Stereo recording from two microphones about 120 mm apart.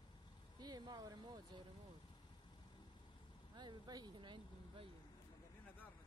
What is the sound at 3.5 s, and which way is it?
Speech, 35° right (ahead or behind).